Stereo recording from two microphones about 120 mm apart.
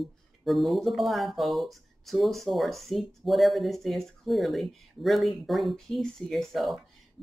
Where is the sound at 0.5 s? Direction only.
Centre (ahead or behind).